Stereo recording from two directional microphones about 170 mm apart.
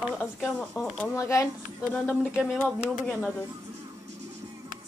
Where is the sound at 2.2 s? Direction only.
5° right (ahead or behind).